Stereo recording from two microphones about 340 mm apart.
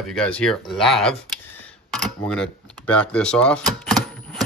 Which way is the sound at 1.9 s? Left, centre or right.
Centre.